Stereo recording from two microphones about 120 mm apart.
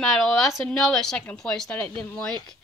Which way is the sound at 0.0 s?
5° left (ahead or behind).